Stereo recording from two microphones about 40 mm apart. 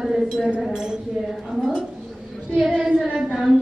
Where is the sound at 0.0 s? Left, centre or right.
Centre.